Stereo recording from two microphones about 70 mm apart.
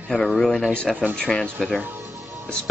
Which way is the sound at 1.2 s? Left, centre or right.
Centre.